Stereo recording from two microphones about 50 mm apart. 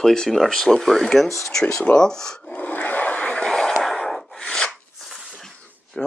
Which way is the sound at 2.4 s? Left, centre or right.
Left.